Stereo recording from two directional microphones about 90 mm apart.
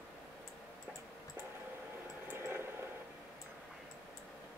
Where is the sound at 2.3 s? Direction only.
25° right (ahead or behind).